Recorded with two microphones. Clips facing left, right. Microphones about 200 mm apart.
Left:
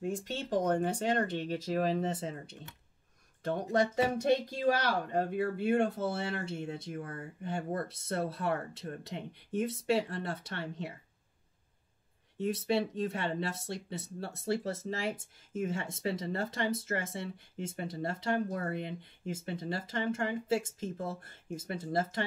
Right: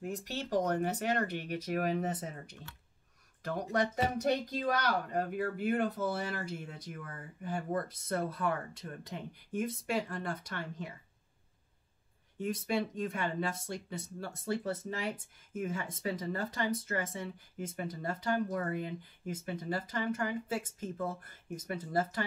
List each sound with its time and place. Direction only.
0.0 s speech: 25° left (ahead or behind)
12.6 s speech: 25° left (ahead or behind)